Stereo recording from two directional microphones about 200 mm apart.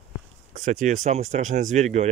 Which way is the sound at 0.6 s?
40° right (ahead or behind).